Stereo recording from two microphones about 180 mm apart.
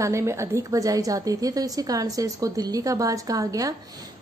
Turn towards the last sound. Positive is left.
turn(degrees=-20)  # may be behind; listen again after turning